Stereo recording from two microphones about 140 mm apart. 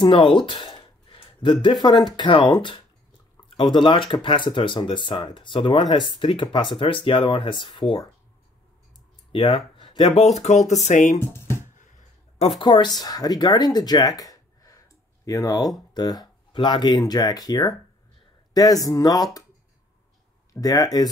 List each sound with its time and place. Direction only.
0.0 s speech: 40° left (ahead or behind)
9.3 s speech: 40° left (ahead or behind); by 11.1 s 60° left (ahead or behind)
11.3 s music: 20° left (ahead or behind)
12.4 s speech: 40° left (ahead or behind)
20.6 s speech: 25° left (ahead or behind)